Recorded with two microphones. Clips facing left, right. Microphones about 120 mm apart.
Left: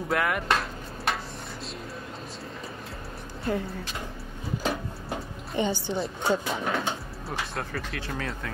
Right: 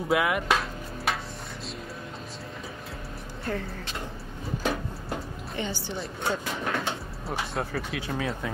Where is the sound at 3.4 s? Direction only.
10° left (ahead or behind).